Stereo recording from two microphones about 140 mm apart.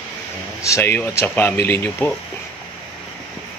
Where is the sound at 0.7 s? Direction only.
15° left (ahead or behind).